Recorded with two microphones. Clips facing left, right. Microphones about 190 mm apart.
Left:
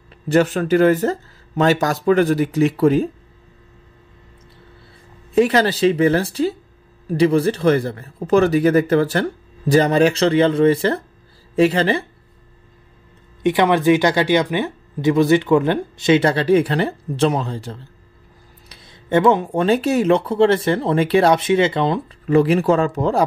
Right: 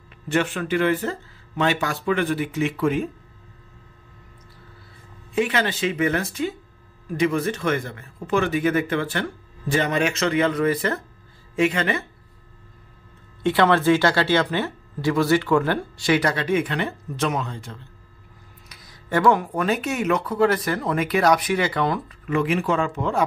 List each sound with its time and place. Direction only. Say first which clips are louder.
0.3 s speech: left 7 dB; 40° left (ahead or behind)
5.3 s speech: left 7 dB; 35° left (ahead or behind)
13.4 s speech: left 3 dB; 15° left (ahead or behind); by 23.2 s 35° left (ahead or behind)